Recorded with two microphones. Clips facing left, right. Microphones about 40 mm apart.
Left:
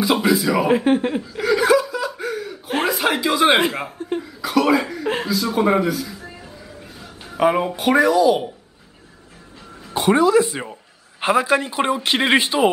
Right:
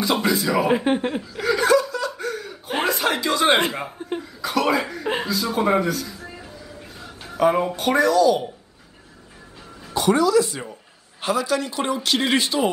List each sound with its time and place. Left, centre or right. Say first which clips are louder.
0.0 s chuckle: left 3 dB; centre
4.0 s speech: left 3 dB; centre
7.3 s speech: left 1 dB; centre
9.9 s speech: left 2 dB; left